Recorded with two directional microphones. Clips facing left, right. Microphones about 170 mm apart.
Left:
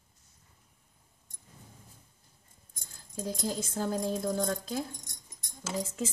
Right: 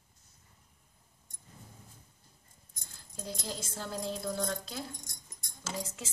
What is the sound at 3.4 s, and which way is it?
A woman's voice, 45° left (ahead or behind).